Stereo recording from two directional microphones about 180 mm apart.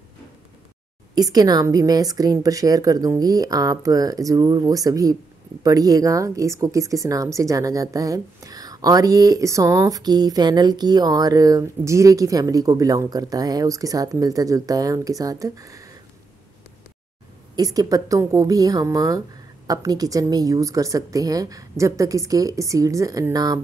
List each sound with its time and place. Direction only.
1.1 s speech: 20° right (ahead or behind)
17.6 s speech: 20° right (ahead or behind)